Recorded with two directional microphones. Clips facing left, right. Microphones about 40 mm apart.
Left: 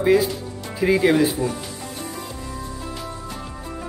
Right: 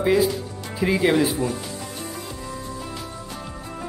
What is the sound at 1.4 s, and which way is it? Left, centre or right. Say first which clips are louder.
Speech: left 1 dB; right.